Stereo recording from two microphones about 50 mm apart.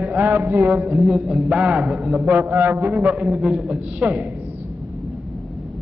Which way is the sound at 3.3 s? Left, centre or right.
Centre.